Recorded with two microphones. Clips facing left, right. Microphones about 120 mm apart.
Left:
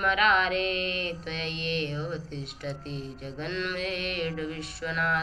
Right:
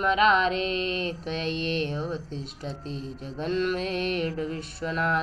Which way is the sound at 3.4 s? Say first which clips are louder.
Right 6 dB; 40° right (ahead or behind).